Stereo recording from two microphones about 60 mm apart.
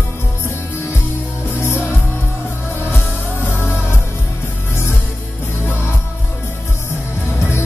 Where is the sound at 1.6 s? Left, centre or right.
Left.